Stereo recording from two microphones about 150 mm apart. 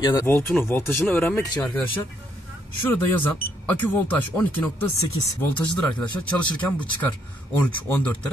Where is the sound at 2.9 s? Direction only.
15° left (ahead or behind).